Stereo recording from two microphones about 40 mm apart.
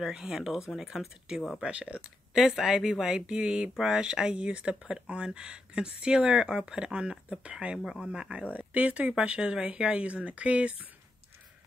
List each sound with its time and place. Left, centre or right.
0.0 s speech: centre
1.6 s speech: right
2.3 s speech: centre
8.5 s speech: right
9.1 s speech: right